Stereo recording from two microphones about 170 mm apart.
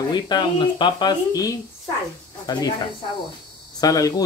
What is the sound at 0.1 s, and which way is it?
Speech, 25° left (ahead or behind).